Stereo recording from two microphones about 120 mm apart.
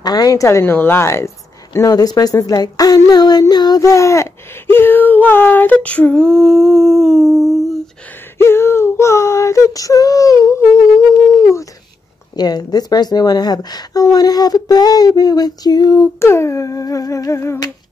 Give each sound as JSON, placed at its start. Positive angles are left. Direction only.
{"t": 0.0, "sound": "speech", "side_deg": 30}
{"t": 7.2, "sound": "humming", "side_deg": -25}
{"t": 8.4, "sound": "speech", "side_deg": 20}
{"t": 12.4, "sound": "female singing", "side_deg": 35}